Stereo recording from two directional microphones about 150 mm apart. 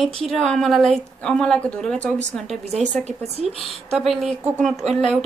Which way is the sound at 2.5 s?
45° right (ahead or behind).